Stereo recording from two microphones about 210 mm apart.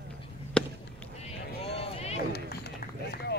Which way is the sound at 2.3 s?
50° left (ahead or behind).